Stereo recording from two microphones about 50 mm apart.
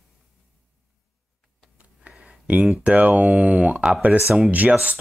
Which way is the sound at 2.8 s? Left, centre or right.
Right.